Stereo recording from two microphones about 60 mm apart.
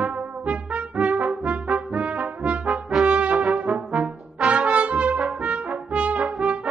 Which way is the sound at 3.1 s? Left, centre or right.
Right.